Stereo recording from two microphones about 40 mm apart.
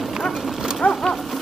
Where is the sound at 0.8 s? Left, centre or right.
Left.